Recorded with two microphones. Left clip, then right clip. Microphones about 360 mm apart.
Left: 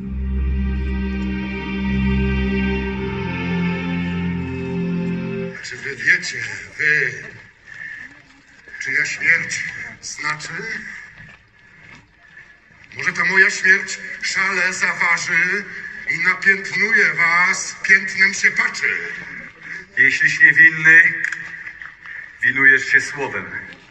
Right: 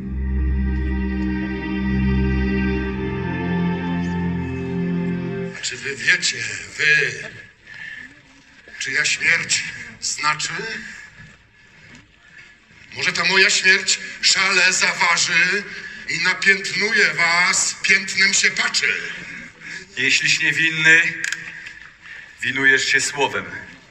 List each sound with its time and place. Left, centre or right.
0.7 s music: left
5.5 s a sound: right
8.7 s a man's voice: right
12.9 s a man's voice: right
22.4 s a man's voice: right